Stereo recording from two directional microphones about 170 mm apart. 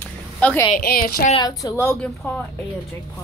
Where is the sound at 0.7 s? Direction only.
60° left (ahead or behind).